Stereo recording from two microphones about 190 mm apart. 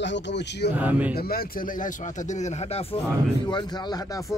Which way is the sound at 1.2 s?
50° left (ahead or behind).